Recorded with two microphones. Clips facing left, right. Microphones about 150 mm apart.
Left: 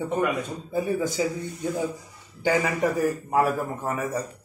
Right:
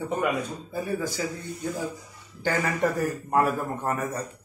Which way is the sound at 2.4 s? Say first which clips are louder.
Left 2 dB; 15° left (ahead or behind).